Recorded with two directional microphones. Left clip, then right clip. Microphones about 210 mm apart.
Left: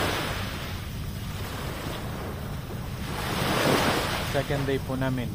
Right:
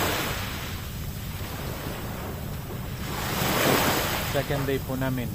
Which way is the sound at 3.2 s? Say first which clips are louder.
Right 1 dB; 40° right (ahead or behind).